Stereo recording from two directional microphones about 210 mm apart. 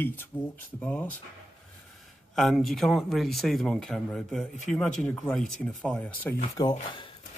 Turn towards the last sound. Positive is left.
turn(degrees=20)  # may be behind; listen again after turning